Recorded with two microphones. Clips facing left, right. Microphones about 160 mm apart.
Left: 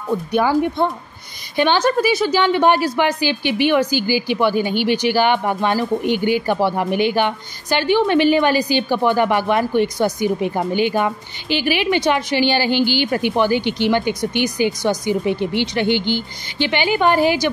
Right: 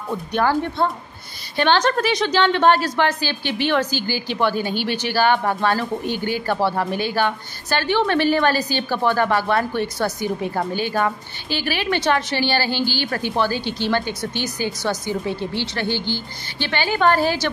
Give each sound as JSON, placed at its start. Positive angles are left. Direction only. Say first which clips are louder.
{"t": 0.3, "sound": "a woman's voice", "louder": "left 3 dB", "side_deg": 10}